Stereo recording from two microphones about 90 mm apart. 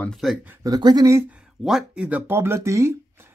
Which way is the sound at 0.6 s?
45° right (ahead or behind).